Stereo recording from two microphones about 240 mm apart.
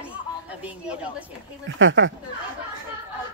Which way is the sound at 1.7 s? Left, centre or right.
Right.